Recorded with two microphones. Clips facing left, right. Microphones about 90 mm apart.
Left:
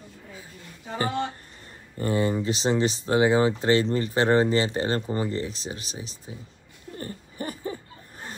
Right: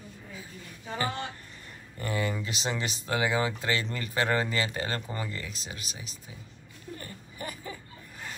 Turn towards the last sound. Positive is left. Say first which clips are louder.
# left 6 dB
turn(degrees=35)  # may be behind; listen again after turning